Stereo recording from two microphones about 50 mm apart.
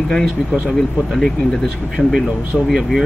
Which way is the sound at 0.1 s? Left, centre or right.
Centre.